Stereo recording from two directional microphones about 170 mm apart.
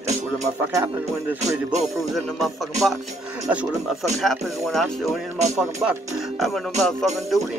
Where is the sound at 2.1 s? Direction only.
Centre (ahead or behind).